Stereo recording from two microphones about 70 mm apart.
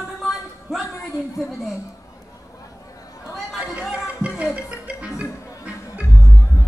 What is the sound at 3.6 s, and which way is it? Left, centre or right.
Music, centre.